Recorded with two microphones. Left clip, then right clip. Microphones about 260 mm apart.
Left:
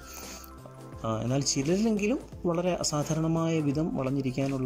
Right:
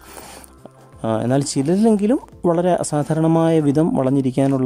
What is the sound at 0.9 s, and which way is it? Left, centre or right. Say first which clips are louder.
Speech: right 11 dB; right.